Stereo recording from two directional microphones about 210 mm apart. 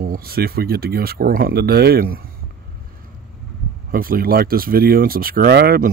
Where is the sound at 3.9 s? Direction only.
45° right (ahead or behind).